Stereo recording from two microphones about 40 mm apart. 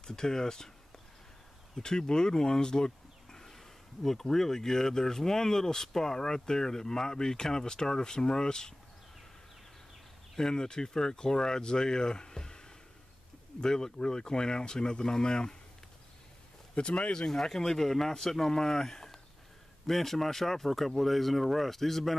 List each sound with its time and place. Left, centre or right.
0.0 s speech: centre
1.8 s speech: centre
10.3 s speech: centre
16.7 s speech: left
17.3 s speech: centre